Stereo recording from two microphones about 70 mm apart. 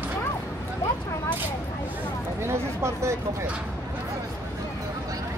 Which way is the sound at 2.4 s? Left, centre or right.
Right.